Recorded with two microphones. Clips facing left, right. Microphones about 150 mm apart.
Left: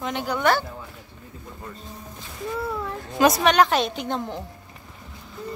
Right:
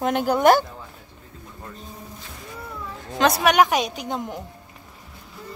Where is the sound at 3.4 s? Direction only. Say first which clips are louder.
Even; 10° right (ahead or behind).